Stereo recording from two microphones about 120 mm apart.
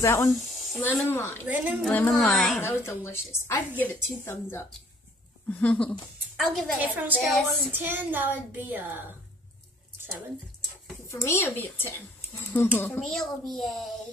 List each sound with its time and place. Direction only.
0.0 s a woman's voice: 20° left (ahead or behind)
1.4 s a woman's voice: 15° right (ahead or behind)
2.0 s a child's voice: 10° left (ahead or behind)
2.6 s a woman's voice: 20° left (ahead or behind); by 6.8 s centre (ahead or behind)
6.8 s a woman's voice: 15° right (ahead or behind)
7.2 s a child's voice: centre (ahead or behind)
7.7 s a woman's voice: 15° right (ahead or behind)
11.1 s a woman's voice: 20° left (ahead or behind)
13.0 s a child's voice: centre (ahead or behind)